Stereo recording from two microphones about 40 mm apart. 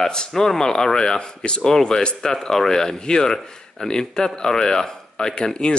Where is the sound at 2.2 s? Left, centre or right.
Centre.